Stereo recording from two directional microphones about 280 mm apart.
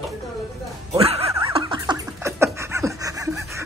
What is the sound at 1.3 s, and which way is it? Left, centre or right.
Snicker, centre.